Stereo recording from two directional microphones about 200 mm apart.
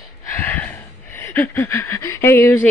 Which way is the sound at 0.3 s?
10° left (ahead or behind).